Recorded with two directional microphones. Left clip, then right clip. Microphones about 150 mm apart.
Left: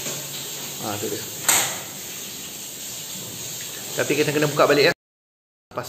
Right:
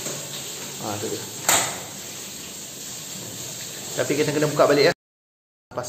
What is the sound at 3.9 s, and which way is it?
Speech, 10° left (ahead or behind).